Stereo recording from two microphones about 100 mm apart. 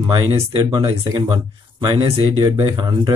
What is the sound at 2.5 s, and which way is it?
Speech, 50° right (ahead or behind).